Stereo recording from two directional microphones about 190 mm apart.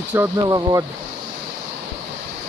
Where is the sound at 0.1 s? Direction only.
15° right (ahead or behind).